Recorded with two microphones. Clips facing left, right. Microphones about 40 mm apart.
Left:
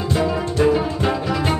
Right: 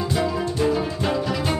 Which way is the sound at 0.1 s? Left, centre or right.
Left.